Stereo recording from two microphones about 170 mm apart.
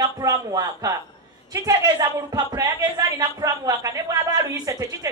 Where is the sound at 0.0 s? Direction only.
20° right (ahead or behind).